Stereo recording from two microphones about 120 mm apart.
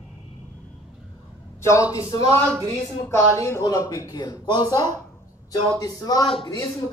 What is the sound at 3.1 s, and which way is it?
Speech, 25° left (ahead or behind).